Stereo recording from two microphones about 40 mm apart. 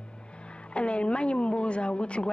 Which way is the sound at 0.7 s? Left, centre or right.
Left.